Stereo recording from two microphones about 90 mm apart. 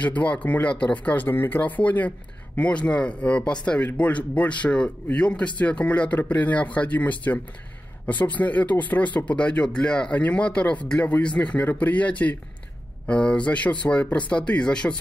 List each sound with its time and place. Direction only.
0.0 s speech: 15° left (ahead or behind)